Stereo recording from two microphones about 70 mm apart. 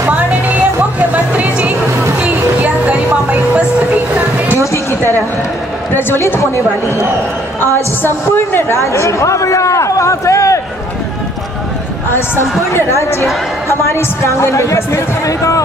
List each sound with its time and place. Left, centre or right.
0.9 s music: right
2.1 s a sound: centre
5.9 s a woman's voice: left
12.1 s a man's voice: left